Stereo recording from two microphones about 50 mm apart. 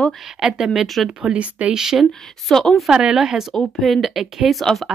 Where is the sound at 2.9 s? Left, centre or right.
Centre.